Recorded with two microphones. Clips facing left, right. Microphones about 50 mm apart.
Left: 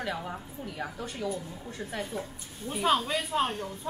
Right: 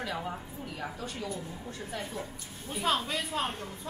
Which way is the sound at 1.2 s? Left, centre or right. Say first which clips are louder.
Left 6 dB; left.